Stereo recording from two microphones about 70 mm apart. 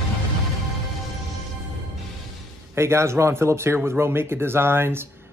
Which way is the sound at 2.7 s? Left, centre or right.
Right.